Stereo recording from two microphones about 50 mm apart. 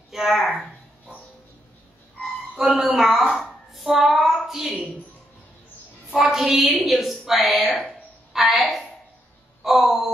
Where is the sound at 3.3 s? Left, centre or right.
Centre.